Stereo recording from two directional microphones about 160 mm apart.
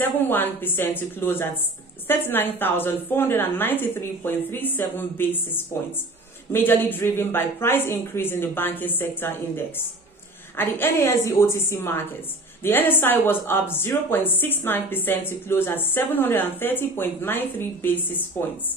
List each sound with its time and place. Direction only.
0.0 s speech: 10° left (ahead or behind)
6.5 s speech: 10° left (ahead or behind)